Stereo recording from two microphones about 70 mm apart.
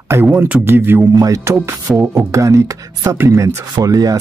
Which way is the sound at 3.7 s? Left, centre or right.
Right.